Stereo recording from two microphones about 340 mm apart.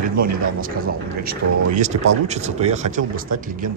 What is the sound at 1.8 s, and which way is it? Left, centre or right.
Speech, centre.